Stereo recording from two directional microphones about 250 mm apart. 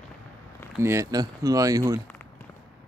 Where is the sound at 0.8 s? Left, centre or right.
Centre.